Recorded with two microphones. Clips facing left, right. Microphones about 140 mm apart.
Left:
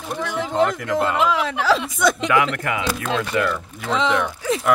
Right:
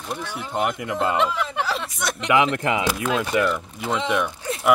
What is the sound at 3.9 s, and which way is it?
Speech, 90° left.